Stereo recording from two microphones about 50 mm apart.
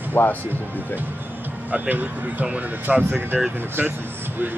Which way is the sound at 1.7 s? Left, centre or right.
Right.